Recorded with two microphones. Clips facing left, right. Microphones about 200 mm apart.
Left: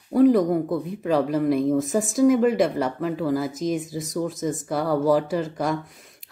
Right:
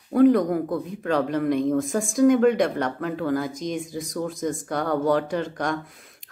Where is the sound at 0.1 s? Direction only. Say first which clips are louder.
Even; centre (ahead or behind).